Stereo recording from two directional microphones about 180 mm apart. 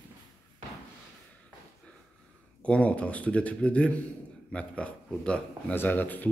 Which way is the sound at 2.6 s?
5° left (ahead or behind).